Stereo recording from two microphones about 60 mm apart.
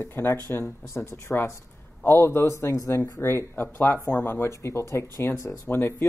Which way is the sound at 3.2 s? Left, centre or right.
Left.